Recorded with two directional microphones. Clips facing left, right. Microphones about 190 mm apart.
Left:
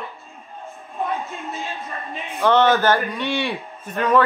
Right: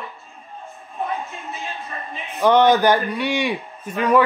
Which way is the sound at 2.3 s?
15° right (ahead or behind).